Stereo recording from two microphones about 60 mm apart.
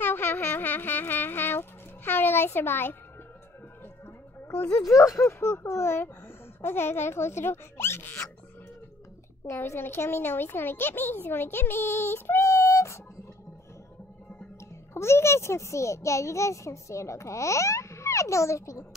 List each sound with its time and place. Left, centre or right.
0.0 s a sound: left
4.6 s speech: left
4.8 s speech: left
9.5 s a child's voice: left
15.0 s a child's voice: left